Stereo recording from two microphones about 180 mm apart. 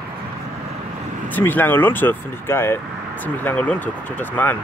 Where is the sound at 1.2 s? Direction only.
10° left (ahead or behind).